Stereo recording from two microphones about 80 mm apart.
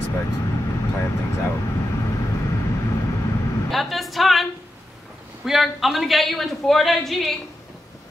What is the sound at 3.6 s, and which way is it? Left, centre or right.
A woman's voice, centre.